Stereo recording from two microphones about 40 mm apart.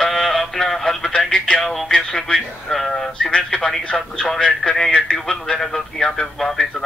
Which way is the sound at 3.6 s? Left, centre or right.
Centre.